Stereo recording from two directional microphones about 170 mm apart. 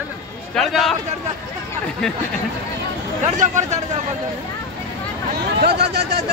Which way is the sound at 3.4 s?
45° right (ahead or behind).